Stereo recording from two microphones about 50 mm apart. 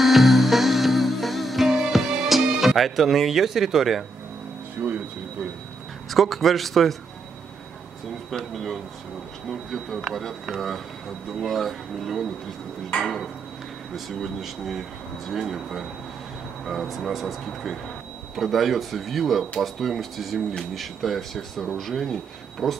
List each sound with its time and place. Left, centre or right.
0.0 s music: centre
4.8 s speech: right
6.0 s speech: centre
8.3 s speech: centre